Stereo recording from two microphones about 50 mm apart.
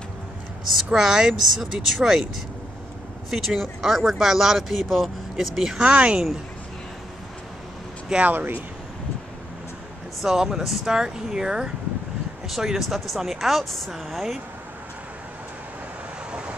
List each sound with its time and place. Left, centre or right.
0.9 s speech: centre
3.3 s speech: centre
5.8 s speech: right
8.2 s speech: right
10.2 s speech: centre
16.3 s vehicle: centre